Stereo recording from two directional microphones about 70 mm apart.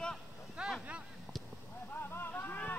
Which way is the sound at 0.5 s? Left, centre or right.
Centre.